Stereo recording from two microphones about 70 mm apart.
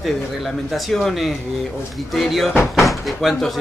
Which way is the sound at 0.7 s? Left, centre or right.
Centre.